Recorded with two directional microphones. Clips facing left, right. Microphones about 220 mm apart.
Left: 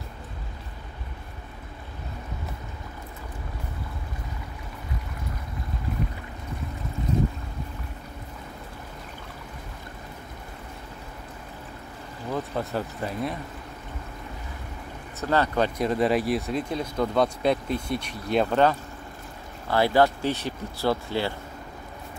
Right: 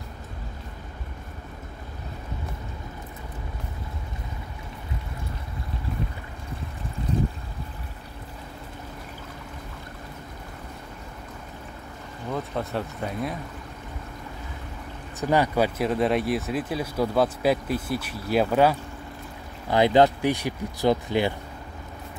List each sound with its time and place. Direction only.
12.3 s speech: centre (ahead or behind)
15.1 s speech: 15° right (ahead or behind)
19.7 s speech: 20° right (ahead or behind)